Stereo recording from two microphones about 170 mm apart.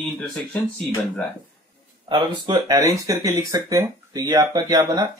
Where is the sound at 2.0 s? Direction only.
25° right (ahead or behind).